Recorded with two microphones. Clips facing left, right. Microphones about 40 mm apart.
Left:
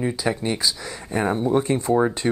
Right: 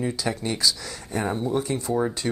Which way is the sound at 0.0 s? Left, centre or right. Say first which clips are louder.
Left 3 dB; centre.